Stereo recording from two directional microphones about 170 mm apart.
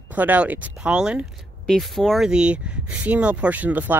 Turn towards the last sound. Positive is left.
turn(degrees=-10)  # may be behind; listen again after turning